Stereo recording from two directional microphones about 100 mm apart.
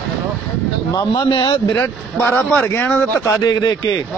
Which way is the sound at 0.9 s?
45° left (ahead or behind).